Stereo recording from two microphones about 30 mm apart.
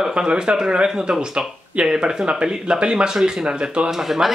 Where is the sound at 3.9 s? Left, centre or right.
Centre.